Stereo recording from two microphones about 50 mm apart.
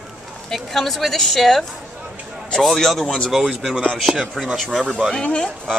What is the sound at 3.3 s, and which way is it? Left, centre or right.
A woman's voice, centre.